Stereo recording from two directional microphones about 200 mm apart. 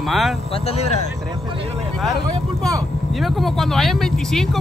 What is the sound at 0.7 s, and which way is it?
Speech, 30° left (ahead or behind).